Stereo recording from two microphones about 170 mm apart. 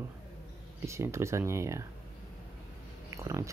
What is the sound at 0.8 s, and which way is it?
Speech, 15° right (ahead or behind).